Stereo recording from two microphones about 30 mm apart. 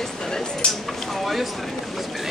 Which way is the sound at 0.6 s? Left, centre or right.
Left.